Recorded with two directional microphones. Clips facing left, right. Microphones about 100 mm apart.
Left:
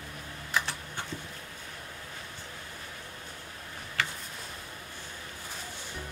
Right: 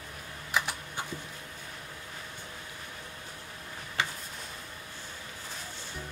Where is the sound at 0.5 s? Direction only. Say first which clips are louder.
Right 1 dB; 10° right (ahead or behind).